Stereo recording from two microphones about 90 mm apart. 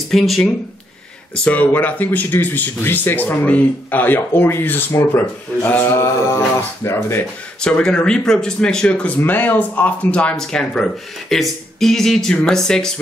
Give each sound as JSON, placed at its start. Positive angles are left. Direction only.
{"t": 0.1, "sound": "speech", "side_deg": 5}
{"t": 1.3, "sound": "speech", "side_deg": 15}
{"t": 5.9, "sound": "a sound", "side_deg": 30}
{"t": 7.6, "sound": "speech", "side_deg": 10}